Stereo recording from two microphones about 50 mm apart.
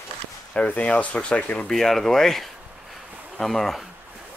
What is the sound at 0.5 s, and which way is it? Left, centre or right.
Speech, left.